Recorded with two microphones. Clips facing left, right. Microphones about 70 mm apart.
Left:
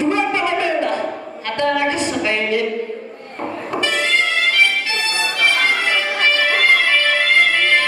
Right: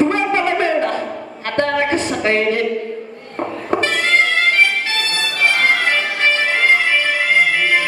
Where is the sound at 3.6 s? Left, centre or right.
Right.